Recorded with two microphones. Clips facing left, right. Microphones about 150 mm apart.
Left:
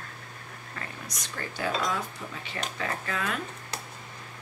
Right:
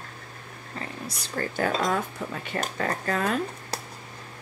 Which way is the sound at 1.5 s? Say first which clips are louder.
Right 4 dB; 50° right (ahead or behind).